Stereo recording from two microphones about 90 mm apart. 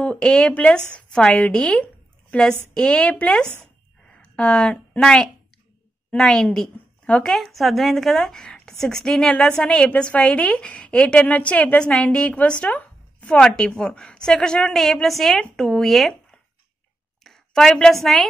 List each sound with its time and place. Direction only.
0.0 s a woman's voice: 10° left (ahead or behind)